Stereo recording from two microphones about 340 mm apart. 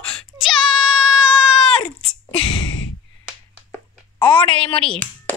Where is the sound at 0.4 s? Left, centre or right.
Centre.